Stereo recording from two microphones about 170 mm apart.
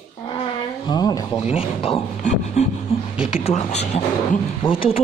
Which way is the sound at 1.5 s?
35° left (ahead or behind).